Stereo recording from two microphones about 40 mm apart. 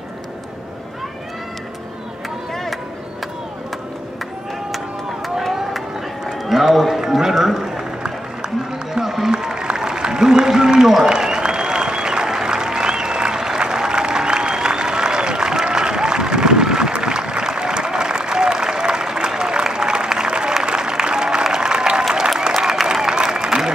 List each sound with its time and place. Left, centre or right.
5.4 s run: centre
8.9 s run: centre
9.3 s a sound: centre
11.1 s applause: centre